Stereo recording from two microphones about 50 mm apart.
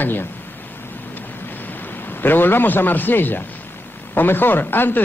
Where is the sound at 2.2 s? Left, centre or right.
Left.